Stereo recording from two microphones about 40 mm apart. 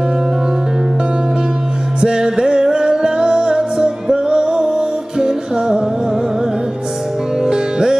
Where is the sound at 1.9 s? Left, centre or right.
Centre.